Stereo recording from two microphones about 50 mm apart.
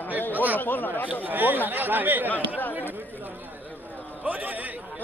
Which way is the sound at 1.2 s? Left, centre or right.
Right.